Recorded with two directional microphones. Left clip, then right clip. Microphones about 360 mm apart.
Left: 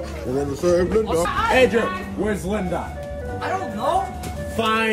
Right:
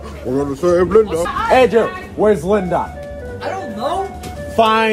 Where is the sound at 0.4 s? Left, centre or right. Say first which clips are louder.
Right 5 dB; centre.